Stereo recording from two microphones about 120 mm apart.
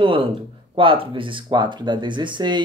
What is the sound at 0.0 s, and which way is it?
Speech, 45° right (ahead or behind).